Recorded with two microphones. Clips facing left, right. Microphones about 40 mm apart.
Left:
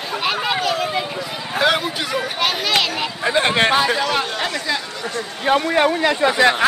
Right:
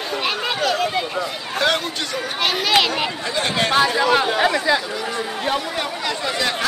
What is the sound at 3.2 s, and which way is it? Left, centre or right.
Speech, left.